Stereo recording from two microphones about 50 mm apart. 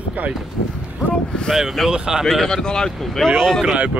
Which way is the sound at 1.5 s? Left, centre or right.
Centre.